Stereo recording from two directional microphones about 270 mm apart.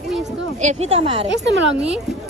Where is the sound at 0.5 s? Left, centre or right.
Right.